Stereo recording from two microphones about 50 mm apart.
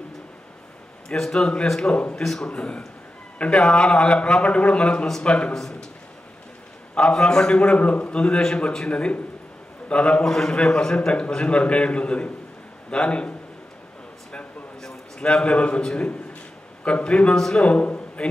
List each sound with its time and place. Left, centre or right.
1.0 s a man's voice: centre
1.8 s a man's voice: left
5.5 s a man's voice: centre
7.0 s a man's voice: centre
10.2 s a man's voice: centre
15.1 s a man's voice: centre
17.6 s a man's voice: left